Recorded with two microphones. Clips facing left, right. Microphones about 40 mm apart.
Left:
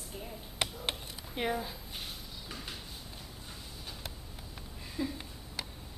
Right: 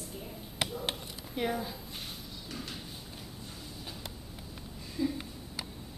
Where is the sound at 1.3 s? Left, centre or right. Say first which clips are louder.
Right 1 dB; centre.